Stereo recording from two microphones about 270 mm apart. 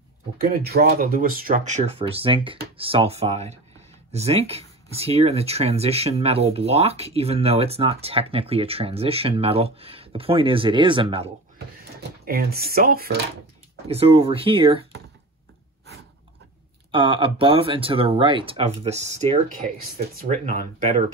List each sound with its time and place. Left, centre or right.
0.4 s speech: right; by 11.2 s centre
12.3 s speech: right
13.8 s speech: right
16.9 s speech: centre